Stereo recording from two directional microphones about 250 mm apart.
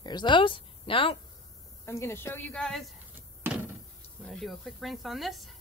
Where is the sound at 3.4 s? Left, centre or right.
Centre.